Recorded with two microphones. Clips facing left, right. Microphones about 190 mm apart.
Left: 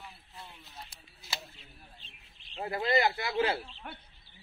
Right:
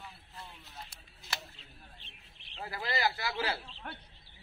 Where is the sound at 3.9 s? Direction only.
5° left (ahead or behind).